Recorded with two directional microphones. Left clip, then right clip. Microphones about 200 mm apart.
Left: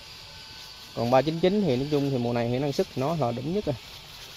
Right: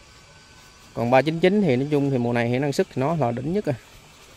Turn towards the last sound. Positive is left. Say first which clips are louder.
# right 4 dB
turn(degrees=-25)  # may be behind; listen again after turning